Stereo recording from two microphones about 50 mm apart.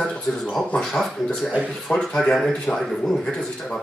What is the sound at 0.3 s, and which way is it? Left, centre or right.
Speech, centre.